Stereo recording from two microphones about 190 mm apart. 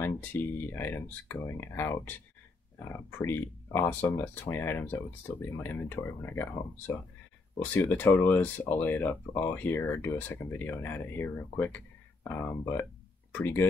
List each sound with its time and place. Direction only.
0.0 s speech: 10° left (ahead or behind)